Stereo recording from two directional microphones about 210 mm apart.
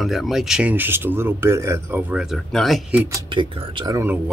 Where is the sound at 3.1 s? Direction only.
20° right (ahead or behind).